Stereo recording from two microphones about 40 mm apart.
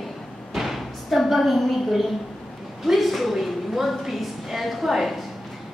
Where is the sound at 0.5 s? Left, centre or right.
Centre.